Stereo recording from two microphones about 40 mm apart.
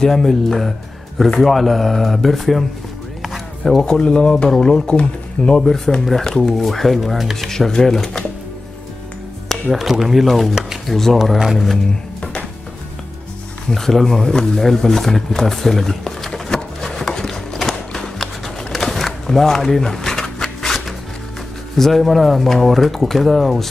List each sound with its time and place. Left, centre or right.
0.0 s speech: centre
3.8 s speech: left
5.6 s speech: centre
7.3 s speech: centre
9.5 s speech: centre
12.2 s music: left
13.7 s speech: centre
14.6 s a sound: centre
18.7 s a sound: centre
21.7 s speech: centre